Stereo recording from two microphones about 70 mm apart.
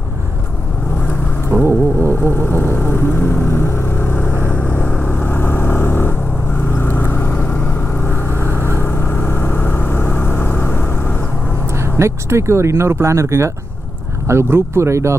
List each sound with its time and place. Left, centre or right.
1.5 s a sound: right
2.5 s vehicle: left; by 5.1 s centre
5.1 s vehicle: left
11.8 s speech: right